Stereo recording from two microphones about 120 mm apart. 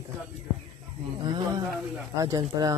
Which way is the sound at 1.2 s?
35° right (ahead or behind).